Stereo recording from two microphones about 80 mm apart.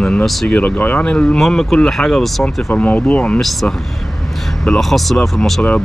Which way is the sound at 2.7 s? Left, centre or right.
Centre.